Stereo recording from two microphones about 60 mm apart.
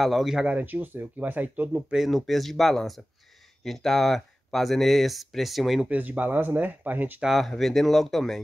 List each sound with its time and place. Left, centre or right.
0.0 s speech: centre
0.5 s speech: right
2.0 s speech: centre
5.9 s speech: right
7.2 s speech: centre